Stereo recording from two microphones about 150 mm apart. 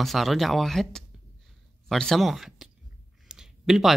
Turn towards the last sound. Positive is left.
turn(degrees=-5)  # may be behind; listen again after turning